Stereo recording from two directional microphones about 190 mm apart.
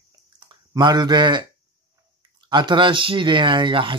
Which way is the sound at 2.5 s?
25° right (ahead or behind).